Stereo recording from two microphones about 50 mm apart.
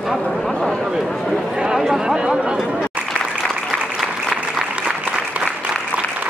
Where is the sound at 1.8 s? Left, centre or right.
Centre.